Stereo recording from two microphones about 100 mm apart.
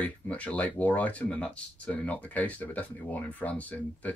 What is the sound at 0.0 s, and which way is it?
Speech, 15° left (ahead or behind).